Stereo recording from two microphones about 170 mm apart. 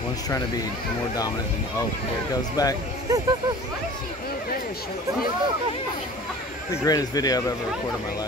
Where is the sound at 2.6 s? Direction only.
20° left (ahead or behind).